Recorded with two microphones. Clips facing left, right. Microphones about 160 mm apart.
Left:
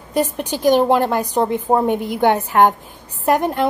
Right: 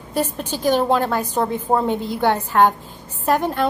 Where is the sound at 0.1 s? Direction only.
15° left (ahead or behind).